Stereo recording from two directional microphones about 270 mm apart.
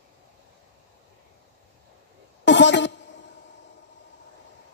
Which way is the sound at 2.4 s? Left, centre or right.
Left.